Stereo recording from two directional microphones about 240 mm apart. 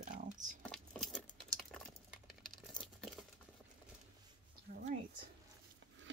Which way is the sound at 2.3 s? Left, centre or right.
Centre.